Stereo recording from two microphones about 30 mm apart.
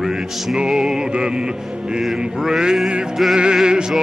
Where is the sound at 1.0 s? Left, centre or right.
Right.